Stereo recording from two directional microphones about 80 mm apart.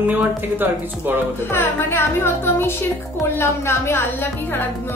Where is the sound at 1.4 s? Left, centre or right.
Left.